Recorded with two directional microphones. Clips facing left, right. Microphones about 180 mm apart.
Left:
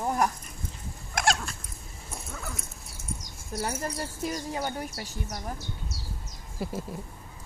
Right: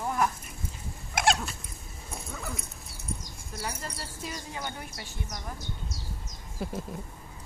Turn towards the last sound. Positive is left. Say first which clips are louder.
# left 1 dB
turn(degrees=5)  # may be behind; listen again after turning